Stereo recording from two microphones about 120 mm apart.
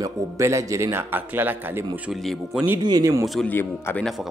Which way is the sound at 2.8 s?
30° right (ahead or behind).